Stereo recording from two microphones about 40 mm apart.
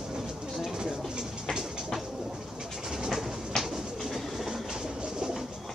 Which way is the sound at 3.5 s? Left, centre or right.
Centre.